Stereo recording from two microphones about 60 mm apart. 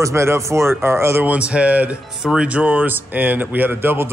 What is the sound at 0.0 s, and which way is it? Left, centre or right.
Speech, right.